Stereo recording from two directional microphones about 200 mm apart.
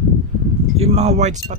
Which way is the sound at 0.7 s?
35° right (ahead or behind).